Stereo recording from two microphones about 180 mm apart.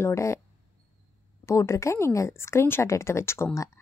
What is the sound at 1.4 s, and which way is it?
Speech, 15° left (ahead or behind).